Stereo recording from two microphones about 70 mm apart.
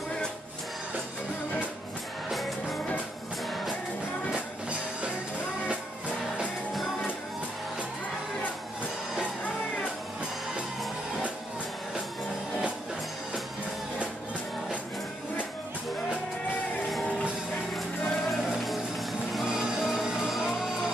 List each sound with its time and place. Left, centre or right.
2.2 s music: centre
4.3 s music: centre
17.7 s music: centre